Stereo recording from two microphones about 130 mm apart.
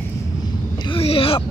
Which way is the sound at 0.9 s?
45° left (ahead or behind).